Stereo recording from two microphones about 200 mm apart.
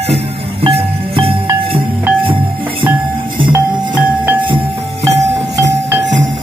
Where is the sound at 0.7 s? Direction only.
30° right (ahead or behind).